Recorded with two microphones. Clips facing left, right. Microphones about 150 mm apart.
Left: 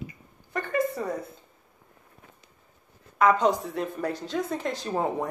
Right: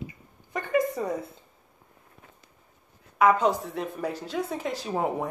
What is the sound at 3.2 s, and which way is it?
Speech, 5° right (ahead or behind).